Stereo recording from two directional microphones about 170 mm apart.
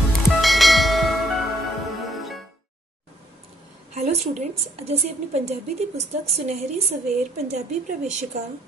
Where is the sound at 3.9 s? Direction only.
40° right (ahead or behind).